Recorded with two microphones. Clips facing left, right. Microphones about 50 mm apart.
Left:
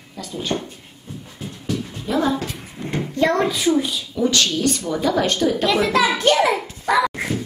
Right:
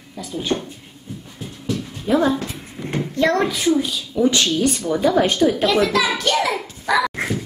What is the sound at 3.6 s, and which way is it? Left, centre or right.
Speech, centre.